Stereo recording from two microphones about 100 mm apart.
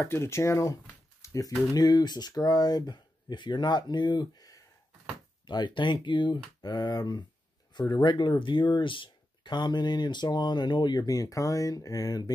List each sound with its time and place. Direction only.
0.0 s speech: 25° left (ahead or behind)
1.2 s a sound: 30° left (ahead or behind)
1.7 s speech: 40° left (ahead or behind)
7.9 s speech: 50° left (ahead or behind)